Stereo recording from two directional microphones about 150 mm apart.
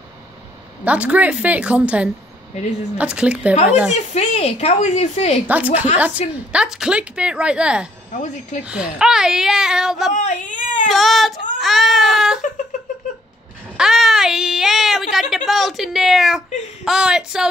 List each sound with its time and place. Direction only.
0.8 s a woman's voice: 10° right (ahead or behind)
3.9 s a woman's voice: 50° left (ahead or behind)
5.5 s a woman's voice: 10° right (ahead or behind)
10.1 s baby cry: 55° left (ahead or behind)
10.9 s whimper: centre (ahead or behind)
13.7 s a woman's voice: centre (ahead or behind)